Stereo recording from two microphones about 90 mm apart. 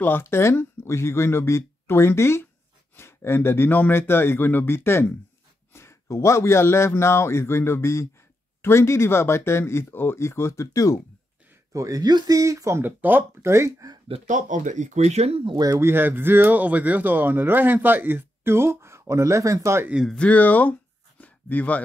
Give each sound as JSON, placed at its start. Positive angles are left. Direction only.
{"t": 0.0, "sound": "a man's voice", "side_deg": 25}
{"t": 11.7, "sound": "speech", "side_deg": -40}
{"t": 12.8, "sound": "speech", "side_deg": -20}
{"t": 15.5, "sound": "speech", "side_deg": -45}
{"t": 15.8, "sound": "speech", "side_deg": -25}
{"t": 20.1, "sound": "speech", "side_deg": 15}
{"t": 21.2, "sound": "a sound", "side_deg": 15}